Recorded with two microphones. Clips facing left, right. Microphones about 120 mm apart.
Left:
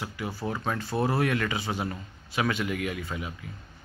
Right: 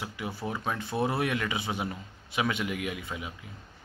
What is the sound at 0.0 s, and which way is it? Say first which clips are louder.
A man's voice: left 2 dB; 20° right (ahead or behind).